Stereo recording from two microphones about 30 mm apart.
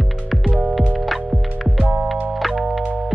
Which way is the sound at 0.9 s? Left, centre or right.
Centre.